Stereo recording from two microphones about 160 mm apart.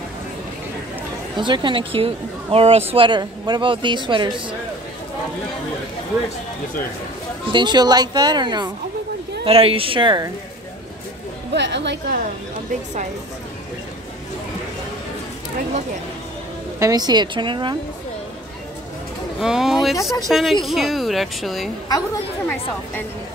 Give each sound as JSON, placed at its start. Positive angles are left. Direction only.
{"t": 1.3, "sound": "a woman's voice", "side_deg": -30}
{"t": 7.5, "sound": "a woman's voice", "side_deg": -25}
{"t": 11.5, "sound": "a woman's voice", "side_deg": -90}
{"t": 16.8, "sound": "speech", "side_deg": -25}
{"t": 19.4, "sound": "speech", "side_deg": -5}
{"t": 21.8, "sound": "a woman's voice", "side_deg": 25}